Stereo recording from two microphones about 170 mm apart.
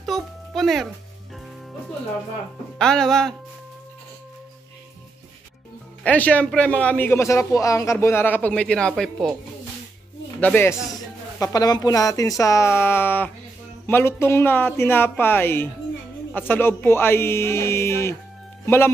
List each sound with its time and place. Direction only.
0.0 s music: centre (ahead or behind)
2.8 s speech: 5° left (ahead or behind)
6.0 s a man's voice: 10° left (ahead or behind)
10.4 s a man's voice: 10° left (ahead or behind)